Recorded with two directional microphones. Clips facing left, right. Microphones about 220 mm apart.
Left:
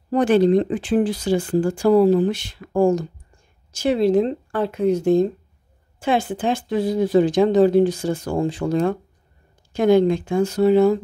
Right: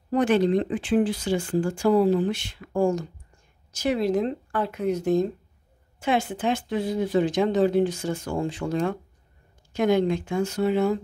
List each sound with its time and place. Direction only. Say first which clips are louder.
0.1 s speech: left 5 dB; 35° left (ahead or behind)